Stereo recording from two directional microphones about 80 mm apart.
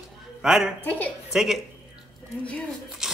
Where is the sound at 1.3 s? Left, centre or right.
Centre.